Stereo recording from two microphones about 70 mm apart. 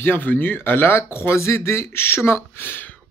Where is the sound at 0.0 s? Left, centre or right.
Left.